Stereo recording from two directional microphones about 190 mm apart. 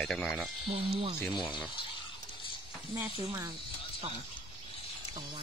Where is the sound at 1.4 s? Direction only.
25° left (ahead or behind).